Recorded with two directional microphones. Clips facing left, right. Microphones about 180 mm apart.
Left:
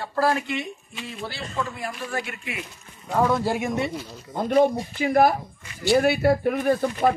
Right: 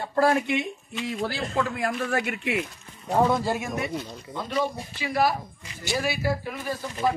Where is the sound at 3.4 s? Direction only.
15° left (ahead or behind).